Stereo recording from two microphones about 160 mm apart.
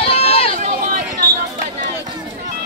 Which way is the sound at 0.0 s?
35° left (ahead or behind).